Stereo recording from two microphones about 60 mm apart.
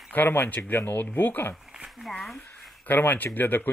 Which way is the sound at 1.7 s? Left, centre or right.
Centre.